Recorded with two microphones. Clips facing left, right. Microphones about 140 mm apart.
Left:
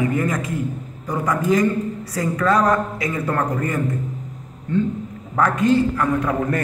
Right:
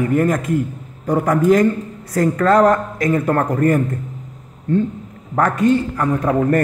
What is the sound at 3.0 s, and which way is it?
Speech, 45° right (ahead or behind).